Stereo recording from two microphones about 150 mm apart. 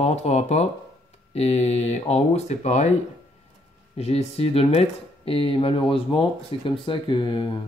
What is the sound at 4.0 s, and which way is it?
Speech, 45° left (ahead or behind).